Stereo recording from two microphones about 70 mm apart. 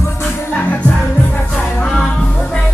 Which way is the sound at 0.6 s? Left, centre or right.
Left.